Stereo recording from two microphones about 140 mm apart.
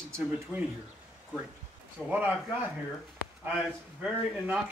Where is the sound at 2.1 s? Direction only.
10° right (ahead or behind).